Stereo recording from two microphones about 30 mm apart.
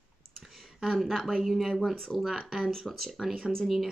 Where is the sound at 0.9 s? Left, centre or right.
Centre.